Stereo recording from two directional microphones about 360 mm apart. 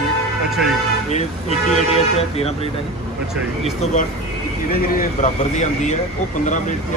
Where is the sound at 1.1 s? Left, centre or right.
Centre.